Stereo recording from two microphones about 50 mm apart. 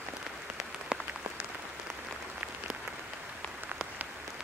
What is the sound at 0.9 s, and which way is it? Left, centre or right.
Applause, centre.